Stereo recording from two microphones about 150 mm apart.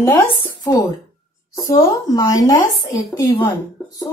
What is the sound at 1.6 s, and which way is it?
Speech, 25° left (ahead or behind).